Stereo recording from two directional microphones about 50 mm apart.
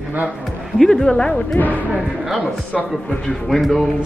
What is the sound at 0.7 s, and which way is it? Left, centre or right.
Speech, centre.